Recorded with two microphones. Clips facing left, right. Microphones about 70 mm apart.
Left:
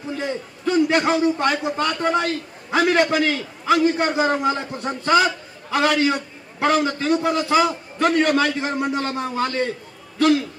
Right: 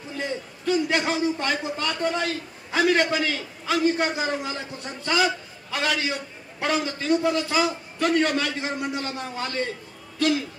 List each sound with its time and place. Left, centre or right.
0.2 s a man's voice: left